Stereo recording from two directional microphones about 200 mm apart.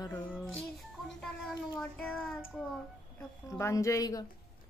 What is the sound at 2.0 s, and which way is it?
Speech, centre (ahead or behind).